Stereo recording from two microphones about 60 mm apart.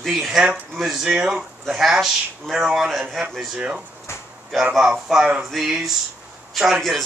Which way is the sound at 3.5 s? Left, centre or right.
Centre.